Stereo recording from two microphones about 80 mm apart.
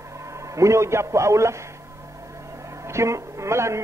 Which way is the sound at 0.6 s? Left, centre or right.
Right.